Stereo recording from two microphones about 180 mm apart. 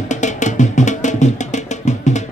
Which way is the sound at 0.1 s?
40° left (ahead or behind).